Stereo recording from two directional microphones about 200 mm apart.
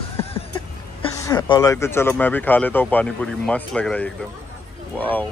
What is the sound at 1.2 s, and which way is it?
Speech, 20° left (ahead or behind).